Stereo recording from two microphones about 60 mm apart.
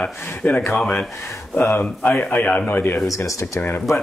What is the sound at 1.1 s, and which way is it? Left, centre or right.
Speech, left.